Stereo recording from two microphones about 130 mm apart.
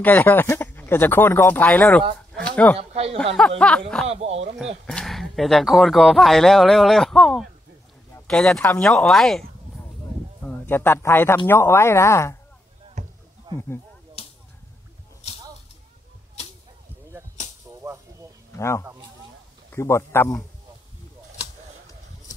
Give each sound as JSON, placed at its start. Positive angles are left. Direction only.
{"t": 0.0, "sound": "speech", "side_deg": 15}
{"t": 2.3, "sound": "a sound", "side_deg": 10}
{"t": 2.8, "sound": "speech", "side_deg": -50}
{"t": 3.3, "sound": "speech", "side_deg": 5}
{"t": 4.1, "sound": "speech", "side_deg": -55}
{"t": 4.8, "sound": "speech", "side_deg": 5}
{"t": 10.4, "sound": "speech", "side_deg": 15}
{"t": 13.0, "sound": "a sound", "side_deg": -65}
{"t": 13.5, "sound": "snake", "side_deg": -35}
{"t": 14.2, "sound": "whip", "side_deg": 50}
{"t": 17.6, "sound": "whip", "side_deg": -20}
{"t": 19.7, "sound": "speech", "side_deg": 20}